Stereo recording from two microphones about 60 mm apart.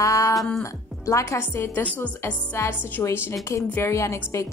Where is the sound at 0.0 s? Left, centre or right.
Left.